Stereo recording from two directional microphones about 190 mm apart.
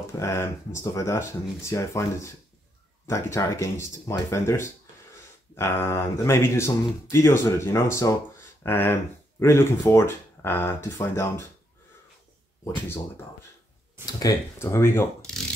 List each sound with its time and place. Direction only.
0.2 s speech: 15° left (ahead or behind)
14.0 s speech: 15° left (ahead or behind)